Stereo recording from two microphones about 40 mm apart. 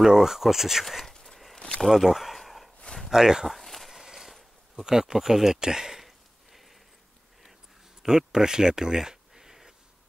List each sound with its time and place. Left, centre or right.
0.0 s speech: centre
0.8 s speech: centre
1.2 s a sound: centre
3.1 s speech: centre
3.4 s a sound: centre
4.0 s mechanisms: centre
4.7 s speech: centre
8.0 s speech: centre